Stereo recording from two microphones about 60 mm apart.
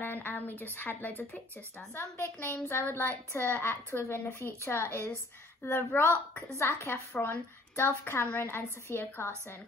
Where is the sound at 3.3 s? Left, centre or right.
Left.